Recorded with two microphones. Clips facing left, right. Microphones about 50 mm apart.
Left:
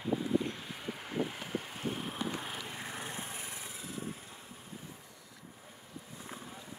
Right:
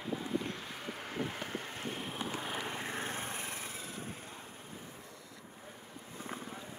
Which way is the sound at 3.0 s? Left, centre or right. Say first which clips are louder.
Right 3 dB; right.